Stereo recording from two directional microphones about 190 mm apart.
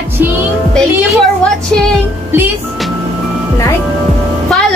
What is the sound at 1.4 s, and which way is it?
Speech, 5° left (ahead or behind).